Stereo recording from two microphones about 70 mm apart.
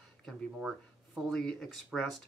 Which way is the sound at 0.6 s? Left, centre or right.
Centre.